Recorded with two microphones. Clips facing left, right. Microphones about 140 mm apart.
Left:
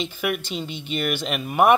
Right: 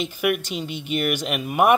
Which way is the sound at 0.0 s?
10° right (ahead or behind).